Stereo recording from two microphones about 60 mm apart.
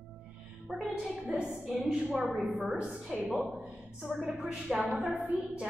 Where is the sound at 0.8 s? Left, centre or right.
Centre.